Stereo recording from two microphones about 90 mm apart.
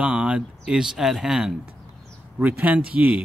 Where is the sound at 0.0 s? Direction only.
15° right (ahead or behind).